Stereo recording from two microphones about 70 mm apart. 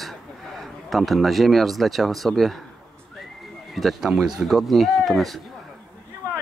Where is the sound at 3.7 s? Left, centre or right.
Centre.